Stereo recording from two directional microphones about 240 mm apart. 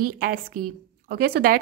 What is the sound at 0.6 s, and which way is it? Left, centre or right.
Speech, right.